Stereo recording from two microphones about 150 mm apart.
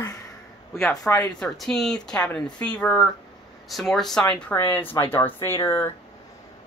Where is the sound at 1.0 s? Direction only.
10° left (ahead or behind).